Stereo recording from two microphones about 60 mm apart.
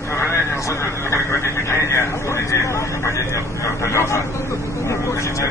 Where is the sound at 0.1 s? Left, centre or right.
Left.